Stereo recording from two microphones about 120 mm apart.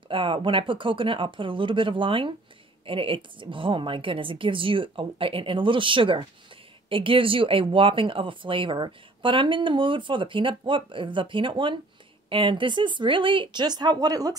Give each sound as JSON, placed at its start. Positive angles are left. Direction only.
{"t": 0.1, "sound": "speech", "side_deg": -45}